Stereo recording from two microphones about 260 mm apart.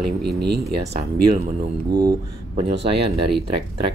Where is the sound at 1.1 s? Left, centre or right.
Right.